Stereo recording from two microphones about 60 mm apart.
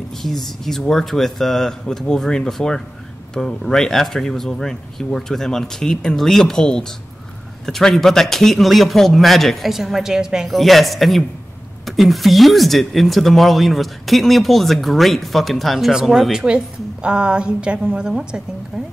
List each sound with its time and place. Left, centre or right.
0.2 s speech: centre
10.5 s a woman's voice: centre